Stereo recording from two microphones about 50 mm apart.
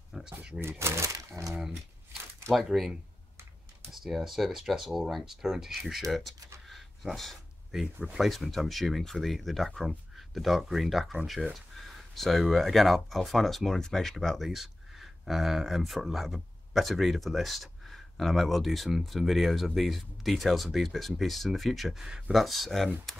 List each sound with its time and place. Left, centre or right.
0.1 s a sound: centre
0.6 s speech: right
2.5 s speech: centre
3.9 s speech: centre
6.7 s a sound: centre
7.8 s speech: centre
8.2 s speech: centre